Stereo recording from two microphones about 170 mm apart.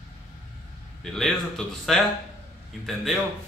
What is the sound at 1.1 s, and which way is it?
A man's voice, centre (ahead or behind).